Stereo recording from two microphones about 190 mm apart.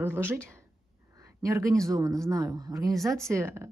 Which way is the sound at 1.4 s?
15° right (ahead or behind).